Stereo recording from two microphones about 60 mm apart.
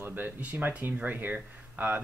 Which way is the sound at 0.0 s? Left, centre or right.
Right.